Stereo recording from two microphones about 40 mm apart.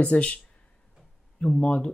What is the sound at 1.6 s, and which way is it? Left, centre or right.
Speech, left.